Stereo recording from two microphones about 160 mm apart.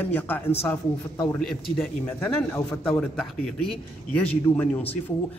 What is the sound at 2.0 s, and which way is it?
Speech, 15° left (ahead or behind).